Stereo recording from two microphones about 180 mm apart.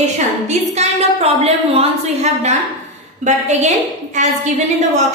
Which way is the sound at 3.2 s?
40° right (ahead or behind).